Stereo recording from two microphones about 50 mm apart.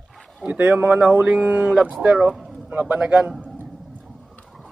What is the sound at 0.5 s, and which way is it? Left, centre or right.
Speech, right.